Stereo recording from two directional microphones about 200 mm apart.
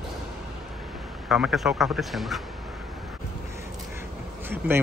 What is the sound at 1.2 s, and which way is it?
Speech, 5° right (ahead or behind).